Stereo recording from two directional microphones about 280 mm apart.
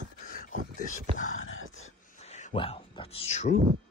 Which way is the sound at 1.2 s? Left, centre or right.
Left.